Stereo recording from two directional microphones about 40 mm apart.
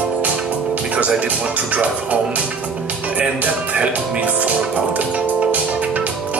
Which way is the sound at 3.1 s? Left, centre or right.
Right.